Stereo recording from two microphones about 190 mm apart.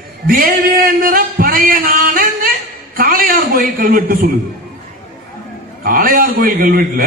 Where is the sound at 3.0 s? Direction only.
50° right (ahead or behind).